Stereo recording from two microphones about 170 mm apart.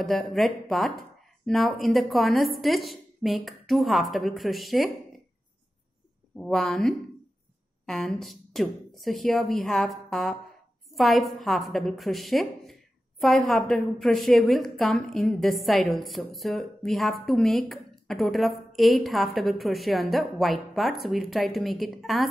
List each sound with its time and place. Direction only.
0.0 s speech: centre (ahead or behind)
6.3 s speech: centre (ahead or behind)